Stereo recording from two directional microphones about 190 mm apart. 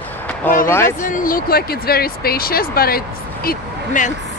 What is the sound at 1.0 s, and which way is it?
Speech, 45° left (ahead or behind).